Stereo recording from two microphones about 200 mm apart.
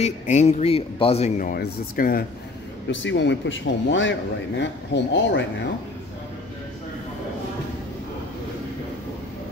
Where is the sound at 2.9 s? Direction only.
65° left (ahead or behind).